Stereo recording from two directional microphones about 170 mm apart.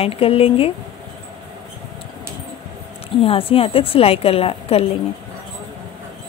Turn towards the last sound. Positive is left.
turn(degrees=35)  # may be behind; listen again after turning